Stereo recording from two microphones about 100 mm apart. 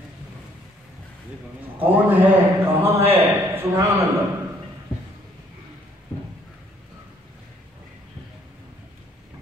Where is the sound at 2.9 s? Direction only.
20° right (ahead or behind).